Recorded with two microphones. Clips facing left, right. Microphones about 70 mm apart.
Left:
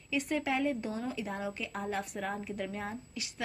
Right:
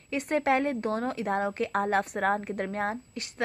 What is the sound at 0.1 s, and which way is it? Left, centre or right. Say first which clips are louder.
A woman's voice: right 6 dB; right.